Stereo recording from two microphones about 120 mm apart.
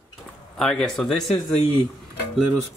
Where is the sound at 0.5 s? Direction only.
5° left (ahead or behind).